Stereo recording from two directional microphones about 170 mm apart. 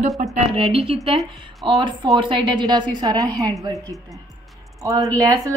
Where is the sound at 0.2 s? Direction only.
40° right (ahead or behind); by 3.5 s 20° right (ahead or behind).